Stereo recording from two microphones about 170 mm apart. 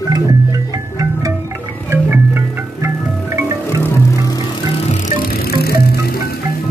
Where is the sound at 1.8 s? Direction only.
10° right (ahead or behind).